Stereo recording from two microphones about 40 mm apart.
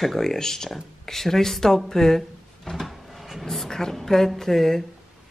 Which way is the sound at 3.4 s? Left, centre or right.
Centre.